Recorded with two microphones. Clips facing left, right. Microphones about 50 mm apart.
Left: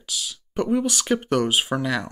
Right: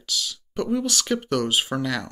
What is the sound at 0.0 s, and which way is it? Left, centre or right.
Speech, centre.